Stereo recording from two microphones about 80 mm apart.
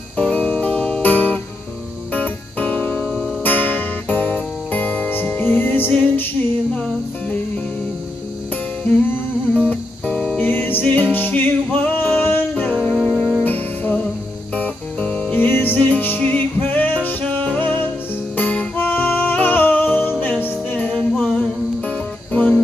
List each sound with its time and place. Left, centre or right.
0.2 s music: centre
6.7 s music: centre
10.1 s music: centre
10.4 s music: left
12.9 s music: centre
13.4 s music: left